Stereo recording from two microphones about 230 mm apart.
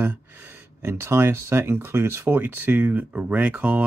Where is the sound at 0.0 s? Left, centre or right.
Centre.